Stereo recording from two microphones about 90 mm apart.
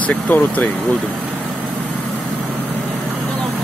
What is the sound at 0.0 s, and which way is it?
Speech, 20° left (ahead or behind).